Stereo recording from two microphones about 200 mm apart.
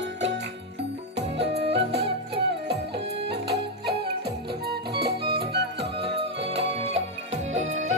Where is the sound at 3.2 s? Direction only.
55° right (ahead or behind).